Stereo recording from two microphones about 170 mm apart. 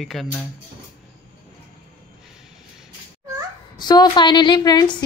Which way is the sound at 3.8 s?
25° left (ahead or behind).